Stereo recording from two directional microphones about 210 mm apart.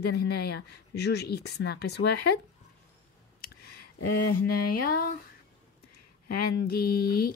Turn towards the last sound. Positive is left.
turn(degrees=45)  # may be behind; listen again after turning